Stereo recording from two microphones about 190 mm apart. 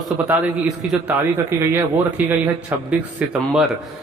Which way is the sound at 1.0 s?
10° right (ahead or behind).